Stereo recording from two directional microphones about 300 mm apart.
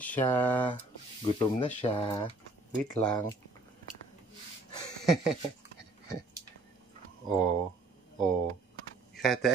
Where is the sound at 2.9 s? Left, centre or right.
Centre.